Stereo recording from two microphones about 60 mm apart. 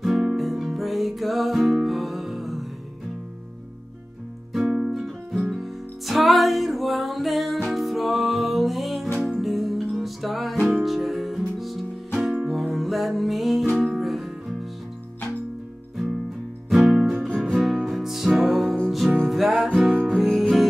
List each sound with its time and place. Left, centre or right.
0.0 s music: centre
4.5 s music: centre
16.8 s music: centre
17.3 s music: centre